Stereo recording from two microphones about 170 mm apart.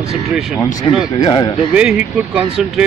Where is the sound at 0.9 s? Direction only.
30° left (ahead or behind).